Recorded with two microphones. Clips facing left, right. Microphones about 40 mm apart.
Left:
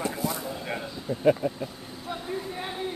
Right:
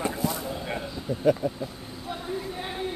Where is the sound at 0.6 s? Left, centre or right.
Centre.